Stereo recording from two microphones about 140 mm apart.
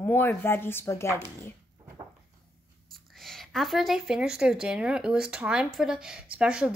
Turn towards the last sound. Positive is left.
turn(degrees=-5)  # may be behind; listen again after turning